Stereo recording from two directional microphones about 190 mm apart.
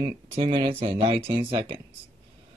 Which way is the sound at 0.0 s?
25° right (ahead or behind).